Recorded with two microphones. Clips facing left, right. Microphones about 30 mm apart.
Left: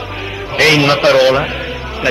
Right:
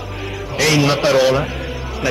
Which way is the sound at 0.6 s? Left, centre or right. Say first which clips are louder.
Left 5 dB; left.